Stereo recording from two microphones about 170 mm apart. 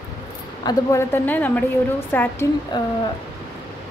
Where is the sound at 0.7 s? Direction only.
15° left (ahead or behind).